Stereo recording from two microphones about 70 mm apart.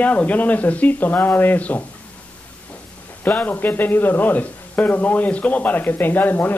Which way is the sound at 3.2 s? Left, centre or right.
Left.